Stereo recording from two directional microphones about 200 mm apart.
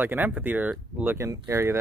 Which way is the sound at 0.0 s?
10° right (ahead or behind).